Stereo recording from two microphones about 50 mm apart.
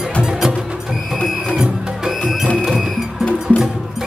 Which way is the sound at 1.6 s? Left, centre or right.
Centre.